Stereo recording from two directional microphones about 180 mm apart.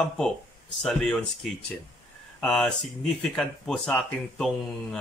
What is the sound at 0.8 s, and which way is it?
Speech, 5° left (ahead or behind).